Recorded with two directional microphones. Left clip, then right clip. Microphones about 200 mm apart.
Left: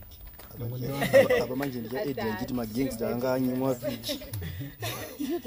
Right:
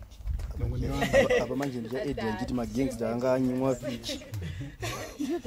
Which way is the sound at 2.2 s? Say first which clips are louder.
Left 1 dB; 40° left (ahead or behind).